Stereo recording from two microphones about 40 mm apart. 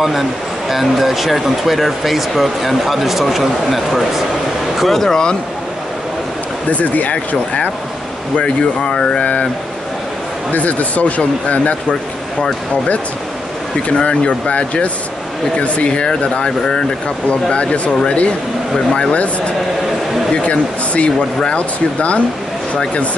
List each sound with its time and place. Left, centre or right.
0.7 s speech: centre
6.7 s speech: left
8.8 s speech: centre
9.2 s speech: left
10.5 s speech: left
13.8 s speech: left
16.4 s speech: centre
17.3 s speech: left
20.4 s speech: left